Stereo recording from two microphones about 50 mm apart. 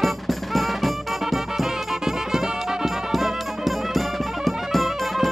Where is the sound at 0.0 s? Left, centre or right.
Centre.